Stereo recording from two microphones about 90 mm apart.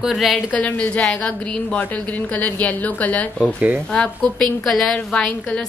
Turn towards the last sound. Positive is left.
turn(degrees=10)  # may be behind; listen again after turning